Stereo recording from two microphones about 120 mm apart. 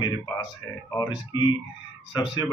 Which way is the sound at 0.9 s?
35° left (ahead or behind).